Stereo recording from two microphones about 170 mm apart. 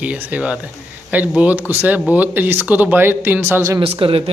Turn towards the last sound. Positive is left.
turn(degrees=-30)  # may be behind; listen again after turning